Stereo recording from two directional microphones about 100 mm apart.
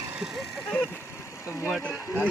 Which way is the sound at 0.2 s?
5° right (ahead or behind).